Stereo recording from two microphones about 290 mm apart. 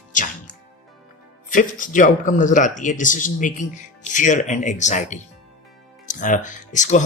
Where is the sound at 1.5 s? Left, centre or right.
Left.